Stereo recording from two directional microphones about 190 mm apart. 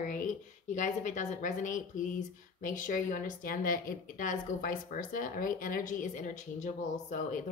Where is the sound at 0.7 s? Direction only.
40° left (ahead or behind).